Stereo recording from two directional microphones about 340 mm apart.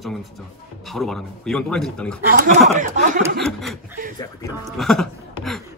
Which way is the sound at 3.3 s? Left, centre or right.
Centre.